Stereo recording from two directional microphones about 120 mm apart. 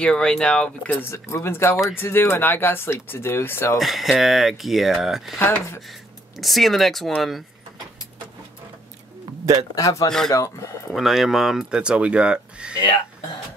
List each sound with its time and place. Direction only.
0.0 s speech: 5° left (ahead or behind)
1.1 s speech: 20° left (ahead or behind)
3.8 s speech: centre (ahead or behind)
9.8 s speech: 25° left (ahead or behind)
10.9 s speech: centre (ahead or behind)